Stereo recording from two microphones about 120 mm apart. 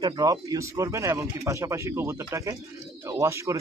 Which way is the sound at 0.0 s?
30° right (ahead or behind).